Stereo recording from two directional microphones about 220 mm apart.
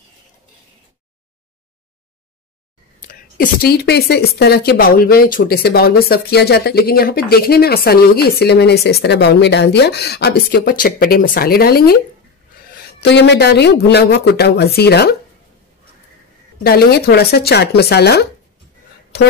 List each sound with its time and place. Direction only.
3.1 s a woman's voice: 45° left (ahead or behind)
16.6 s speech: 45° left (ahead or behind)
19.1 s a sound: 50° left (ahead or behind)